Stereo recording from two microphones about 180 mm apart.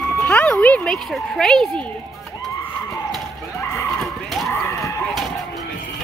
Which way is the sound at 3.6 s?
15° left (ahead or behind).